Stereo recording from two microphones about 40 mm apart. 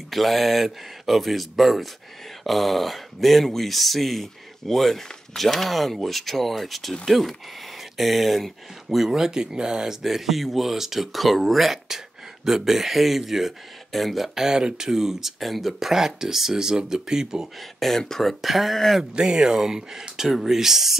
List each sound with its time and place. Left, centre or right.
0.1 s speech: centre
10.0 s speech: centre
17.7 s speech: centre
19.1 s speech: centre